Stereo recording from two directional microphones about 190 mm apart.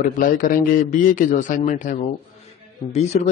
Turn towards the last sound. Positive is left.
turn(degrees=35)  # may be behind; listen again after turning